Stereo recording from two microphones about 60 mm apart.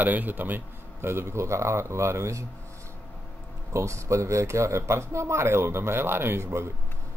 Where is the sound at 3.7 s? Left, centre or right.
Right.